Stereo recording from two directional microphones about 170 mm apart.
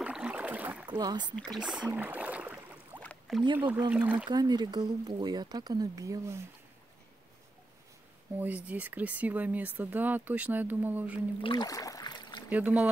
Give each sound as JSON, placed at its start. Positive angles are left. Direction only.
{"t": 0.0, "sound": "rowboat", "side_deg": -5}
{"t": 0.8, "sound": "speech", "side_deg": -25}
{"t": 1.3, "sound": "rowboat", "side_deg": 5}
{"t": 3.0, "sound": "rowboat", "side_deg": 5}
{"t": 3.9, "sound": "speech", "side_deg": -10}
{"t": 4.3, "sound": "speech", "side_deg": -25}
{"t": 8.4, "sound": "speech", "side_deg": -10}
{"t": 11.4, "sound": "rowboat", "side_deg": 25}
{"t": 12.4, "sound": "speech", "side_deg": -10}